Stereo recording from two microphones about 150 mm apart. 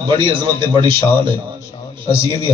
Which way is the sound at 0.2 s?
35° right (ahead or behind).